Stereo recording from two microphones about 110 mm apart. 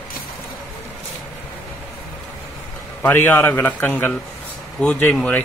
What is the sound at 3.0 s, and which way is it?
Speech, 15° left (ahead or behind).